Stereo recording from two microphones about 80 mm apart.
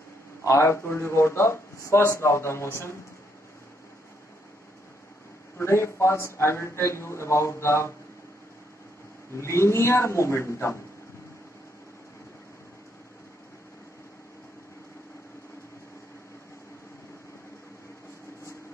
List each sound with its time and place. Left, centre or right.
0.4 s speech: left
5.6 s speech: left
9.3 s speech: left